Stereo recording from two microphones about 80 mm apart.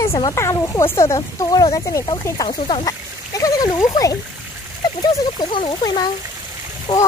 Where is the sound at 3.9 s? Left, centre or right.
Left.